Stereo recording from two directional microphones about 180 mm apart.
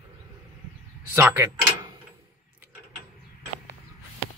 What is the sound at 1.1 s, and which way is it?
Speech, 15° right (ahead or behind).